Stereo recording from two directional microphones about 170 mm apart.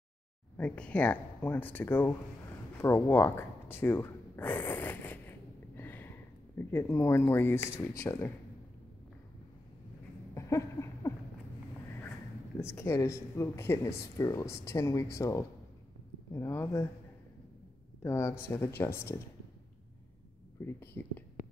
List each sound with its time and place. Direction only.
0.6 s speech: 5° left (ahead or behind)
5.8 s a sound: 15° left (ahead or behind)
6.6 s speech: 15° left (ahead or behind)
10.3 s a sound: 15° left (ahead or behind)
12.5 s speech: 15° left (ahead or behind)
18.0 s speech: 15° left (ahead or behind)
20.6 s speech: 15° left (ahead or behind)